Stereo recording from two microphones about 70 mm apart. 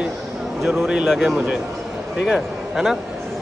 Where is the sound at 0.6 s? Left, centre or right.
Centre.